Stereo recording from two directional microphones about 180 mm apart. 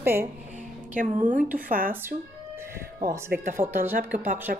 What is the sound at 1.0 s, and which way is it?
Speech, 45° right (ahead or behind).